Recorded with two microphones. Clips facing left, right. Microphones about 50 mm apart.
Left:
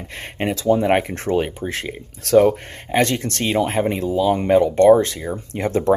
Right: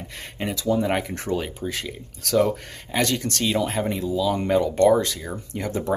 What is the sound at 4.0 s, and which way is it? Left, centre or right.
Speech, left.